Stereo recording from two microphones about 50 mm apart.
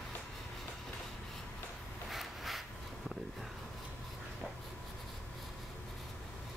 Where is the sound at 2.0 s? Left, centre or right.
Centre.